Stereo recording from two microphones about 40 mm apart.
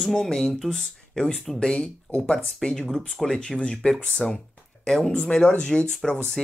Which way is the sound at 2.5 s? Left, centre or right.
Centre.